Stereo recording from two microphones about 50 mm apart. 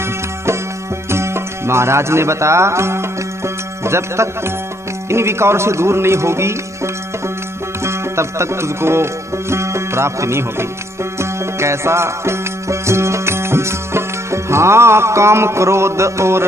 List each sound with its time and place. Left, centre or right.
1.1 s music: right
5.1 s speech: right
7.8 s music: right